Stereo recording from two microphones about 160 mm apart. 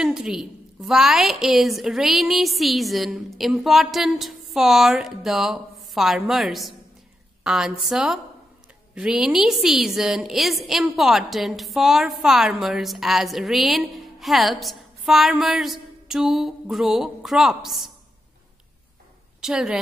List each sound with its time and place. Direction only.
0.0 s a woman's voice: 5° right (ahead or behind)
19.4 s a woman's voice: 5° right (ahead or behind)